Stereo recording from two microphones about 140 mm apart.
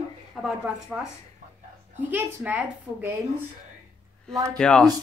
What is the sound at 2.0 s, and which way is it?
A woman's voice, 15° right (ahead or behind).